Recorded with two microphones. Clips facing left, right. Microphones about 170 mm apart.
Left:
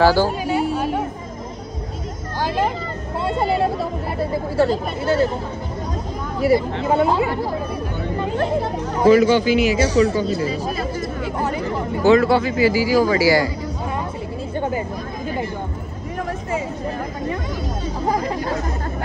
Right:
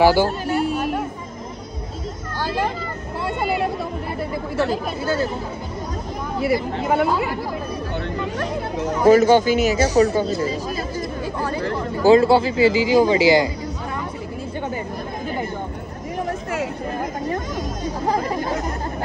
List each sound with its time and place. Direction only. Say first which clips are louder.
0.2 s speech: left 1 dB; 15° left (ahead or behind)
2.4 s vehicle: left 2 dB; 15° left (ahead or behind)
4.2 s speech: left 5 dB; 30° left (ahead or behind)
6.4 s speech: left 4 dB; 30° left (ahead or behind)
8.5 s speech: left 3 dB; 30° left (ahead or behind)
9.0 s speech: even; 45° right (ahead or behind)
11.3 s chatter: left 1 dB; 20° left (ahead or behind)
12.0 s a man's voice: right 1 dB; 30° right (ahead or behind)